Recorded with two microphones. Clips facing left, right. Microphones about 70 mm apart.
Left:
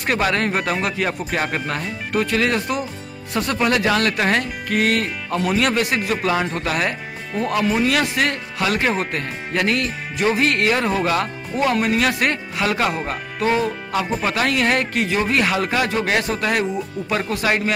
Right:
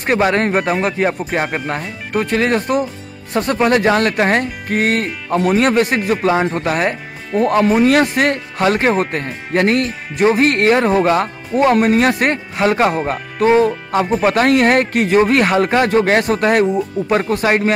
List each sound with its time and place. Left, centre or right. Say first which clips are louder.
0.0 s speech: right 5 dB; right
11.5 s speech: right 7 dB; right
17.3 s speech: right 5 dB; right